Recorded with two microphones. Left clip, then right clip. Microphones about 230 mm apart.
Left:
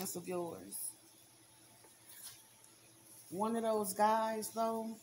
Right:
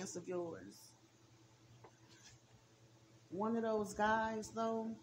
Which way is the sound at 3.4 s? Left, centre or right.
Left.